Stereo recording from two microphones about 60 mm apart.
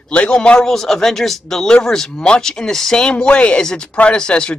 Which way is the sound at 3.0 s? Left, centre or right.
Centre.